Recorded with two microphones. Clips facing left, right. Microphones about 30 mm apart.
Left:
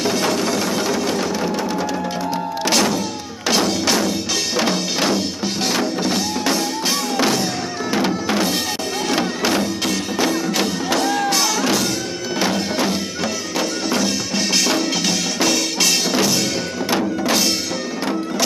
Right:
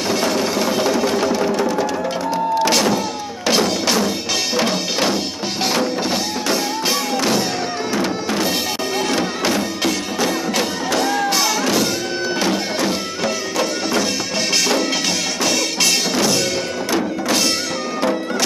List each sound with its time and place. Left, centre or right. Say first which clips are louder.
0.0 s music: even; centre
2.6 s music: left 2 dB; centre
9.5 s music: even; centre